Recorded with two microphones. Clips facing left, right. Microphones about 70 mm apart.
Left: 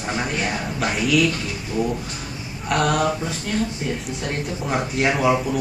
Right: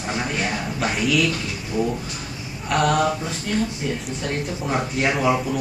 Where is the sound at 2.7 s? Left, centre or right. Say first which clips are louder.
Right 1 dB; centre.